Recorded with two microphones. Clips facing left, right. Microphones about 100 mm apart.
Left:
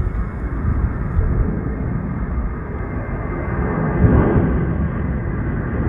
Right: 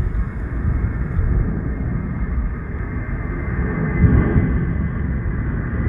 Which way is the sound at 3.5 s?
50° left (ahead or behind).